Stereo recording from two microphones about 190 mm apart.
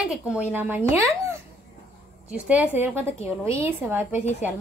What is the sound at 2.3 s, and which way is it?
Speech, 5° right (ahead or behind).